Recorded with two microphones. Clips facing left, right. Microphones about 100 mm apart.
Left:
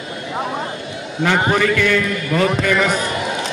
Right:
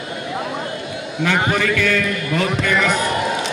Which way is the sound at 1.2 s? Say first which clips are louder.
Left 2 dB; 40° left (ahead or behind).